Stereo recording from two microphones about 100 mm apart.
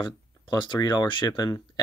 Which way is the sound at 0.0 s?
50° left (ahead or behind).